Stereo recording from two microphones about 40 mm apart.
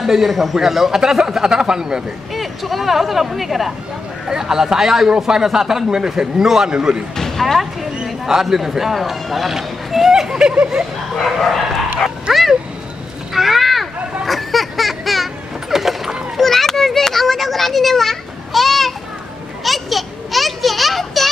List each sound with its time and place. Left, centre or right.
0.0 s a man's voice: centre
2.3 s a man's voice: centre; by 7.0 s right
7.2 s speech: centre
8.0 s speech: centre
11.3 s speech: centre
12.0 s dog: centre
13.3 s a sound: centre
16.3 s children playing: centre
19.6 s a sound: centre